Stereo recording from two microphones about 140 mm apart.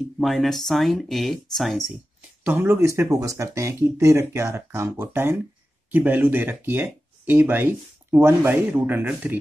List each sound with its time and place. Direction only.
0.2 s speech: centre (ahead or behind)
2.4 s speech: 15° right (ahead or behind)